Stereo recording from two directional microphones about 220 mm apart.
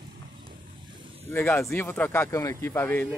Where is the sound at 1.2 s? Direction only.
10° left (ahead or behind).